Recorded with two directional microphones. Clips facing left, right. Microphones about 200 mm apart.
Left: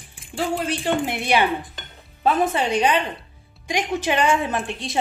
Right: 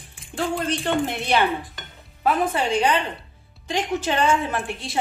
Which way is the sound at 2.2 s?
20° left (ahead or behind).